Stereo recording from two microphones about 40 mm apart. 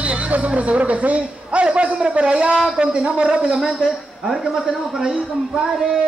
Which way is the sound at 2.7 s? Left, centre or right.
Right.